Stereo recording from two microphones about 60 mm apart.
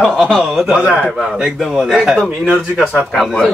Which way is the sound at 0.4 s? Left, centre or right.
Centre.